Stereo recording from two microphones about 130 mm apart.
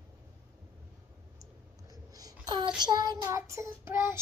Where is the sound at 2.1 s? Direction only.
30° right (ahead or behind).